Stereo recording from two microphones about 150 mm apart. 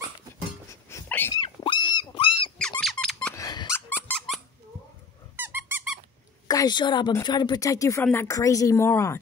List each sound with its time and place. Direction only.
0.7 s a sound: 20° left (ahead or behind)
1.3 s dog: 30° left (ahead or behind)
2.6 s squeak: 5° left (ahead or behind)
3.3 s squeak: 25° left (ahead or behind)
5.3 s squeak: 15° right (ahead or behind)
6.4 s speech: 25° left (ahead or behind)